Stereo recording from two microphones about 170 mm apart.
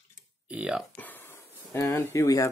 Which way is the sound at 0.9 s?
10° left (ahead or behind).